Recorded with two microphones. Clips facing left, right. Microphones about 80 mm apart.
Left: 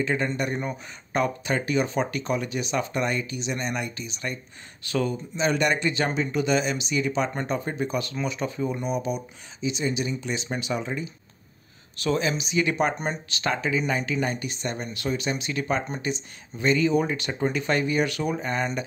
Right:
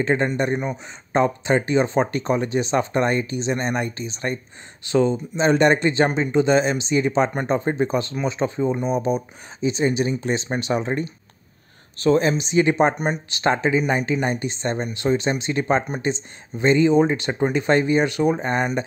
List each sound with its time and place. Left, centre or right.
0.0 s speech: right
0.6 s speech: right
4.8 s speech: right
12.9 s speech: centre
13.3 s speech: right
18.4 s speech: right